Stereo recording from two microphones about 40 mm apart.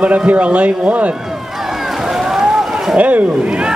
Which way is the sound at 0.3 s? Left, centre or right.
Right.